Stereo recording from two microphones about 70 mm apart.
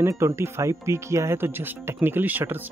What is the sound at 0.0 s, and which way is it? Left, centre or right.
Speech, right.